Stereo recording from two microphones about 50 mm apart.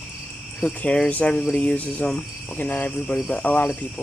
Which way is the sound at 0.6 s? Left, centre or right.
Centre.